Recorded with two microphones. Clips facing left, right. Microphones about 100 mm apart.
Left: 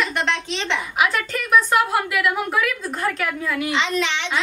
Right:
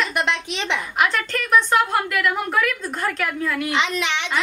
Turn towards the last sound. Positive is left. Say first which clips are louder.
# even
turn(degrees=-15)  # may be behind; listen again after turning